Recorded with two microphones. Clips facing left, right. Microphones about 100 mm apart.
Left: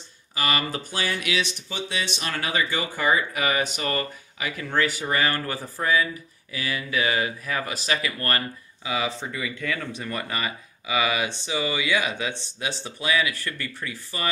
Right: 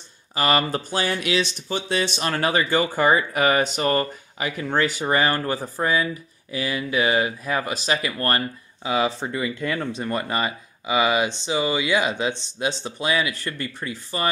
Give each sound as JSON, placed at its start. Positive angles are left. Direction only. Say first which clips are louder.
{"t": 0.3, "sound": "speech", "louder": "right 5 dB", "side_deg": -35}